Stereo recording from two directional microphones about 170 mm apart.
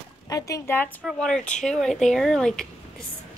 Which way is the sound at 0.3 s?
20° left (ahead or behind).